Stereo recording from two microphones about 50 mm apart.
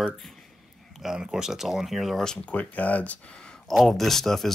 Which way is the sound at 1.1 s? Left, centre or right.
Centre.